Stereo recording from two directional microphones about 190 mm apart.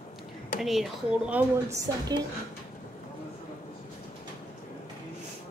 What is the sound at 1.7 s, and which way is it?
Speech, 15° right (ahead or behind).